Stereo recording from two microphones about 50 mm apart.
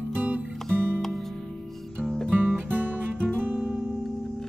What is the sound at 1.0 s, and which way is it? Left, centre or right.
Music, centre.